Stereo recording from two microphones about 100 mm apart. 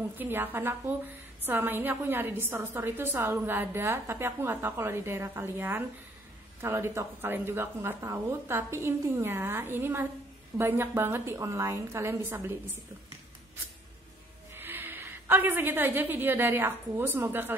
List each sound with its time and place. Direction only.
0.2 s a woman's voice: 20° right (ahead or behind)
14.5 s a woman's voice: 20° right (ahead or behind)